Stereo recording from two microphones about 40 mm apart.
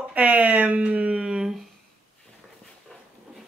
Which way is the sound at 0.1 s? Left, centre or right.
Right.